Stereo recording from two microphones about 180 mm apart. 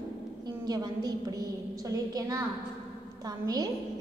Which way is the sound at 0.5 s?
20° right (ahead or behind).